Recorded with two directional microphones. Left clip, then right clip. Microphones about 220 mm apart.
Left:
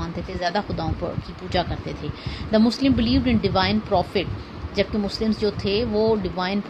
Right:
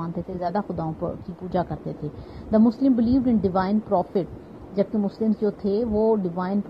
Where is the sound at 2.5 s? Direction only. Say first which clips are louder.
Even; 15° left (ahead or behind).